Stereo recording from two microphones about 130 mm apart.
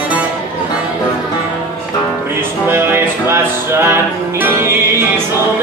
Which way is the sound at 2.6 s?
15° right (ahead or behind).